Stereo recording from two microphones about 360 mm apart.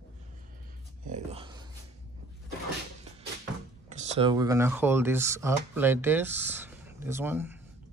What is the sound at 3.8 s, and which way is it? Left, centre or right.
Speech, centre.